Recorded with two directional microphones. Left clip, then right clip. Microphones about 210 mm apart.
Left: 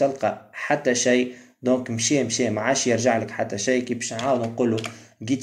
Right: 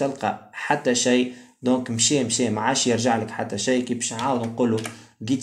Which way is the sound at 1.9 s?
90° right.